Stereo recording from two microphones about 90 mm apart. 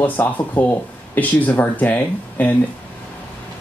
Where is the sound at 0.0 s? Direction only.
20° left (ahead or behind).